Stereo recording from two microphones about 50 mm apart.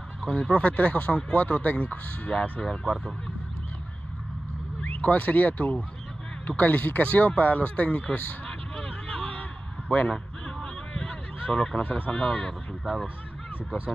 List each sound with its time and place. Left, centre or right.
0.2 s speech: left
2.6 s speech: centre
4.8 s speech: left
8.5 s honk: centre
10.0 s a sound: centre